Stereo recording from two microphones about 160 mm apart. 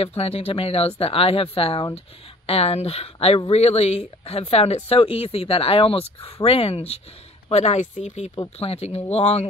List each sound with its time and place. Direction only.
0.0 s speech: 40° left (ahead or behind)